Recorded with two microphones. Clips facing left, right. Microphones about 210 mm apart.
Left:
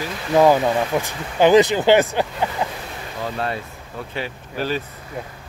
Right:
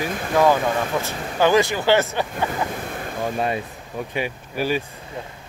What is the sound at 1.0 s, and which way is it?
Speech, 20° left (ahead or behind).